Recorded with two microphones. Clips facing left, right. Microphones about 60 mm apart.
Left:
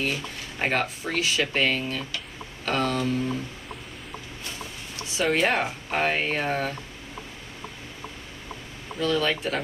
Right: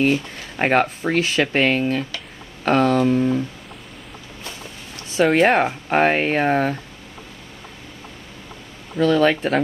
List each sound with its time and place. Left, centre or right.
0.0 s speech: right
5.2 s speech: right
5.5 s speech: right
9.0 s speech: right